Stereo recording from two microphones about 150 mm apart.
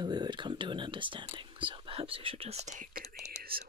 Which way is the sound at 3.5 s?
90° right.